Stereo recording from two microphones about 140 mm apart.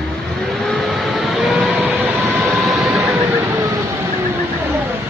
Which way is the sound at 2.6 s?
Centre (ahead or behind).